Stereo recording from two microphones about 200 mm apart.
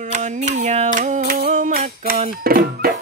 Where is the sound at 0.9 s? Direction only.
40° right (ahead or behind).